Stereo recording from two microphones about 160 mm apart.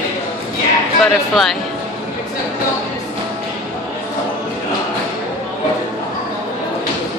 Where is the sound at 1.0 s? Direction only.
Centre (ahead or behind).